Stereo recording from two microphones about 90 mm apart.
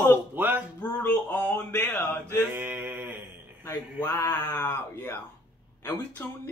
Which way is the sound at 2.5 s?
20° right (ahead or behind).